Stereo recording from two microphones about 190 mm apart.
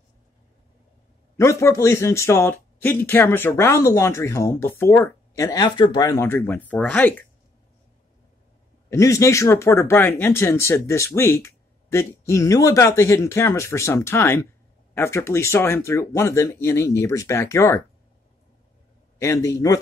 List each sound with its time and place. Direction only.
1.4 s speech: 15° left (ahead or behind)
8.9 s speech: 15° left (ahead or behind)
19.1 s speech: 15° left (ahead or behind)